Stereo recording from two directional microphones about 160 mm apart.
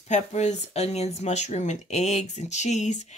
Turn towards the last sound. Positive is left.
turn(degrees=45)  # may be behind; listen again after turning